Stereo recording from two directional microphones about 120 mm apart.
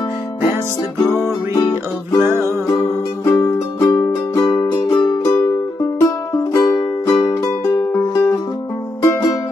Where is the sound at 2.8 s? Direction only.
25° left (ahead or behind); by 5.2 s 40° left (ahead or behind).